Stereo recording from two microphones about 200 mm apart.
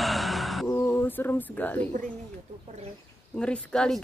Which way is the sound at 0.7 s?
10° left (ahead or behind).